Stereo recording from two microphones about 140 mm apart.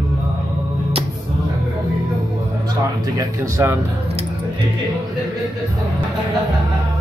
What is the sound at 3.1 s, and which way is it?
Speech, 25° right (ahead or behind).